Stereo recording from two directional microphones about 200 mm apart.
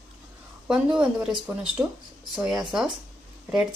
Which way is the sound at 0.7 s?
5° right (ahead or behind).